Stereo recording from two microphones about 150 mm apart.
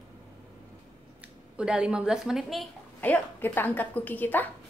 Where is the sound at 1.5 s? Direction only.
5° right (ahead or behind).